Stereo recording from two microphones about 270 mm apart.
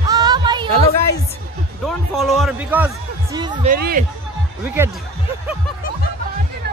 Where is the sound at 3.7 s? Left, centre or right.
Right.